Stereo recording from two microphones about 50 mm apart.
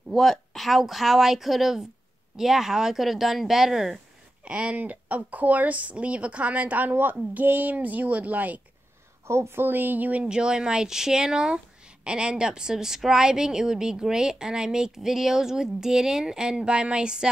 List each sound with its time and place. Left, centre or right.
0.1 s speech: centre
4.5 s speech: right
4.7 s a woman's voice: right
9.3 s a woman's voice: right
9.6 s a woman's voice: right
10.2 s speech: centre